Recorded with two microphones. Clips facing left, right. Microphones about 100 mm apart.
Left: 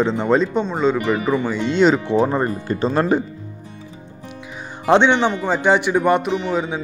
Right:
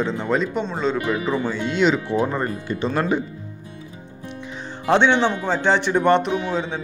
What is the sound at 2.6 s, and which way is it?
Speech, 35° left (ahead or behind).